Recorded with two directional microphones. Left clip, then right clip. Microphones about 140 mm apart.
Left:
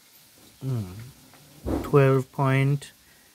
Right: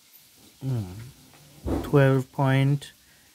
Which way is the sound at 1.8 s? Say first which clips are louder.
Left 1 dB; 10° right (ahead or behind).